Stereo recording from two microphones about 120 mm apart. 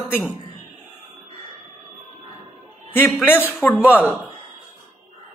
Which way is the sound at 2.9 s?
15° left (ahead or behind).